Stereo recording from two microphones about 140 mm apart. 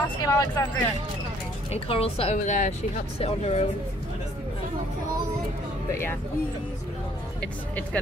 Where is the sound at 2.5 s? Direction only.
65° left (ahead or behind).